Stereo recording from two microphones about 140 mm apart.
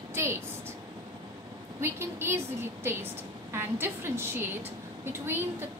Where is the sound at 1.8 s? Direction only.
15° right (ahead or behind).